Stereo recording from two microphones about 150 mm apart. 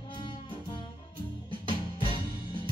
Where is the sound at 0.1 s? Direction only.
35° left (ahead or behind).